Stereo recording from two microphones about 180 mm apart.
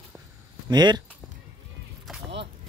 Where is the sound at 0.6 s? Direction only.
25° right (ahead or behind).